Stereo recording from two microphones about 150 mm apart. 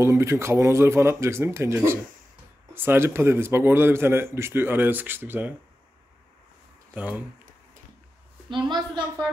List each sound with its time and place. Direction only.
0.0 s speech: 20° right (ahead or behind)
6.9 s speech: 10° right (ahead or behind)
8.5 s a woman's voice: 30° right (ahead or behind)